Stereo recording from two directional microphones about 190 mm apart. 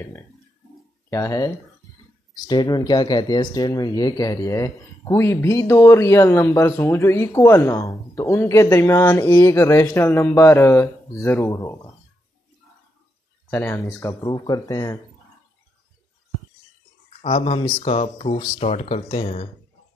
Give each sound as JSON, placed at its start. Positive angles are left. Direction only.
{"t": 1.1, "sound": "speech", "side_deg": 15}
{"t": 13.5, "sound": "speech", "side_deg": 15}
{"t": 17.2, "sound": "speech", "side_deg": 30}